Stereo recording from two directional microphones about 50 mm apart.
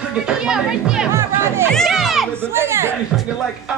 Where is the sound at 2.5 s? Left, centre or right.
Right.